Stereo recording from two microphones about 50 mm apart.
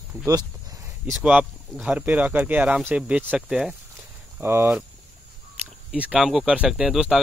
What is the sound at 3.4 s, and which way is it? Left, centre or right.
Speech, centre.